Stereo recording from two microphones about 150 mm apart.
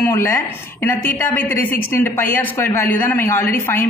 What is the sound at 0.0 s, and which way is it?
A woman's voice, 15° left (ahead or behind).